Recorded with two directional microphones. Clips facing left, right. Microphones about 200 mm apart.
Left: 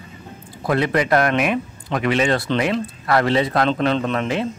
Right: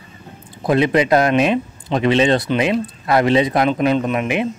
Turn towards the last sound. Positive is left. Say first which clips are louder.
# right 2 dB
turn(degrees=-15)  # may be behind; listen again after turning